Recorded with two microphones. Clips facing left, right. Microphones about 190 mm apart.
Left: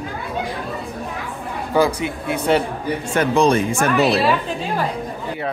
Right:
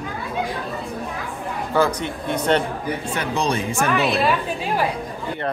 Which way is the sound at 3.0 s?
45° left (ahead or behind).